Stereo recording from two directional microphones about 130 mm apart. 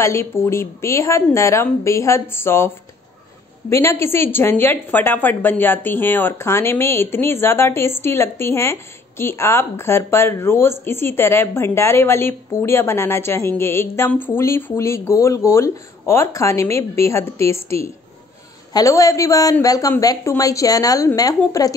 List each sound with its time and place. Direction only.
0.0 s a woman's voice: 20° left (ahead or behind)
3.7 s a woman's voice: 20° left (ahead or behind)